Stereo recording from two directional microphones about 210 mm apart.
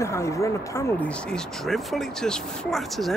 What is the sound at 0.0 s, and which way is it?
Speech, 15° left (ahead or behind).